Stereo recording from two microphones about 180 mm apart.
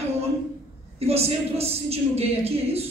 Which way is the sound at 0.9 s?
35° right (ahead or behind).